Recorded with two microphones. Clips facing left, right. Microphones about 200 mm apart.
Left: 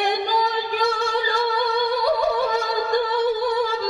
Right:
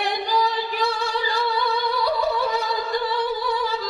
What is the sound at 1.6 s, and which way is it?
Music, 50° left (ahead or behind).